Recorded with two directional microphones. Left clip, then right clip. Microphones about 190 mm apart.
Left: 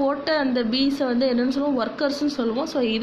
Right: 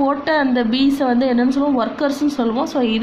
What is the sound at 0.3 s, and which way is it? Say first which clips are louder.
A woman's voice: right 5 dB; 5° left (ahead or behind).